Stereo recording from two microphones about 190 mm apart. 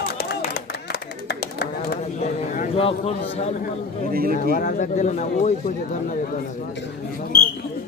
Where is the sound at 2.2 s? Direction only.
35° left (ahead or behind).